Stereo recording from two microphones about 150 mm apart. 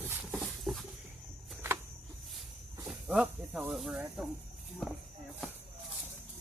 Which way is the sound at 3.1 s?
5° right (ahead or behind).